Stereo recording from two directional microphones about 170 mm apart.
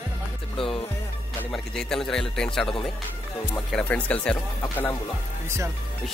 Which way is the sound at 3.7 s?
5° left (ahead or behind).